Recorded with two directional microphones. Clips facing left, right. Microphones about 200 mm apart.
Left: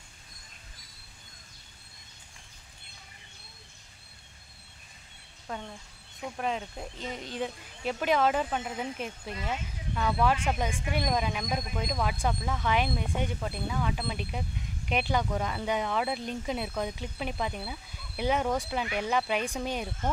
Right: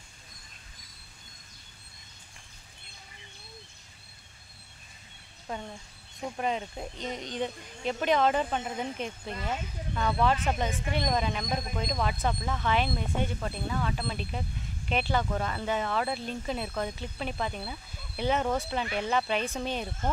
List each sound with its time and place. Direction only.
6.3 s speech: centre (ahead or behind)